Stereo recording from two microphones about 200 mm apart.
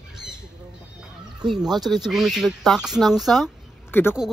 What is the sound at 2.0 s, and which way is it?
A woman's voice, centre (ahead or behind).